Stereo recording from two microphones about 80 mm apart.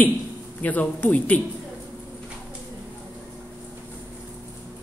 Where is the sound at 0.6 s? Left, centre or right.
Left.